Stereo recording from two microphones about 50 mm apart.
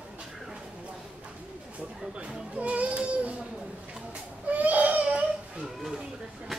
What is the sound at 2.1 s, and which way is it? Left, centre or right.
Baby cry, right.